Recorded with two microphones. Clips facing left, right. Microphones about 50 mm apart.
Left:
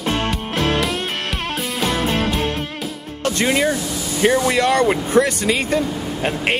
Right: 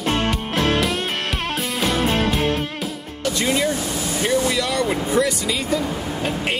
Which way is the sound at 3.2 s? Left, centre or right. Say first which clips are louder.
Left 3 dB; left.